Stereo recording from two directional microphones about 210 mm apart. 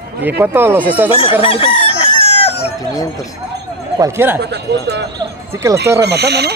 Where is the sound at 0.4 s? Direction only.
10° right (ahead or behind).